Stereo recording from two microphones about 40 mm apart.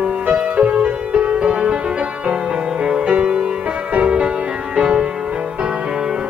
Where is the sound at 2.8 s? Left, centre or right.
Right.